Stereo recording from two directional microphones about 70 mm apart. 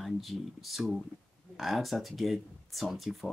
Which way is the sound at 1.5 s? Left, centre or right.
Centre.